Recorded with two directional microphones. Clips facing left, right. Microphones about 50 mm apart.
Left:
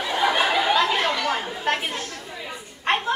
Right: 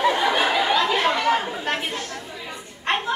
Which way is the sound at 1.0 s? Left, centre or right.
Right.